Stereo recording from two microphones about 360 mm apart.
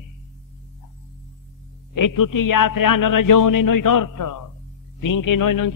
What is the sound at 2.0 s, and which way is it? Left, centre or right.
A man's voice, left.